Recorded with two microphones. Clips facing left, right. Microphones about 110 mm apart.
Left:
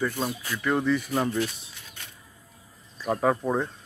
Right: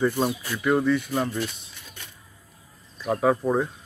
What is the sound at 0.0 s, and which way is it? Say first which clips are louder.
Speech: right 5 dB; 20° right (ahead or behind).